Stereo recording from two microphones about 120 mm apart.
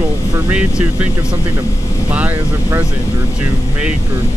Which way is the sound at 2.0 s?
15° right (ahead or behind).